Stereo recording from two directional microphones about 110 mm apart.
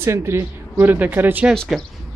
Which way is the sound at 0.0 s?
25° right (ahead or behind).